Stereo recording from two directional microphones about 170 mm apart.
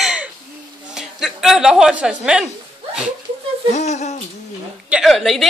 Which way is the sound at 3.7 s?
40° left (ahead or behind).